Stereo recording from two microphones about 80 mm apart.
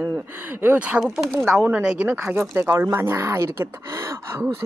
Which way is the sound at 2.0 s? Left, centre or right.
Right.